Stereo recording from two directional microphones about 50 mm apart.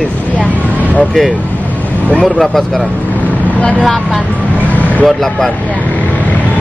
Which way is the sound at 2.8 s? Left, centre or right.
Left.